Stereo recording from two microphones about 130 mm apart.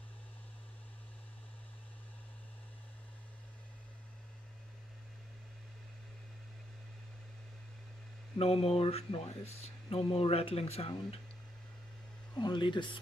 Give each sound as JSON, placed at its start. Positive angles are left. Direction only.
{"t": 8.4, "sound": "speech", "side_deg": 50}
{"t": 12.4, "sound": "speech", "side_deg": 35}